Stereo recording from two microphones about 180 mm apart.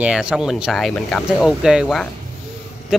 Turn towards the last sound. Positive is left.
turn(degrees=-5)  # may be behind; listen again after turning